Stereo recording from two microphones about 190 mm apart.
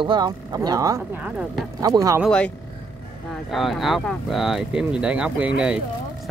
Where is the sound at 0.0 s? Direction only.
25° right (ahead or behind); by 1.7 s 5° right (ahead or behind).